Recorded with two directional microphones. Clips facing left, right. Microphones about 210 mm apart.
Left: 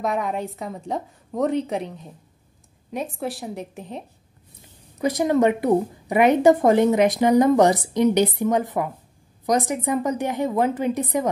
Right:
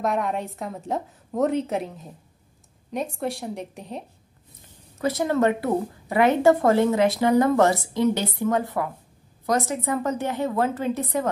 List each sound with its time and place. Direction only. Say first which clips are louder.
0.0 s a woman's voice: even; centre (ahead or behind)
4.9 s a woman's voice: left 3 dB; 15° left (ahead or behind)